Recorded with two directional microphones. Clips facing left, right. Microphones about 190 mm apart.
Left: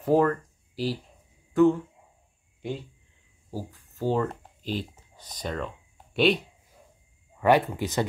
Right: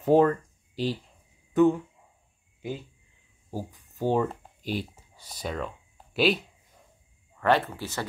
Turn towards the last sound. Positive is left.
turn(degrees=15)  # may be behind; listen again after turning